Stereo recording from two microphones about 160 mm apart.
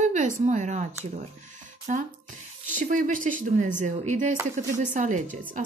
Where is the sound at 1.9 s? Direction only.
55° right (ahead or behind).